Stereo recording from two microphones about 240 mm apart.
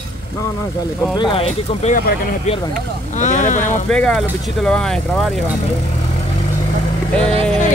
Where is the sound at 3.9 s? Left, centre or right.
Centre.